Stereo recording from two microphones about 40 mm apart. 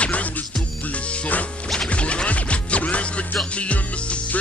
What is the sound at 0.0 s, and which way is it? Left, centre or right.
Music, left.